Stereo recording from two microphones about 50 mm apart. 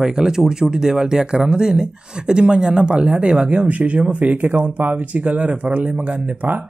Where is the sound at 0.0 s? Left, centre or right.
Centre.